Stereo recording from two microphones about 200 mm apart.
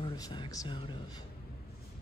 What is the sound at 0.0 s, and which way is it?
Speech, 25° left (ahead or behind).